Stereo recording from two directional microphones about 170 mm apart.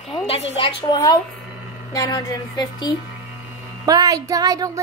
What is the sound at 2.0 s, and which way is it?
Speech, 25° left (ahead or behind).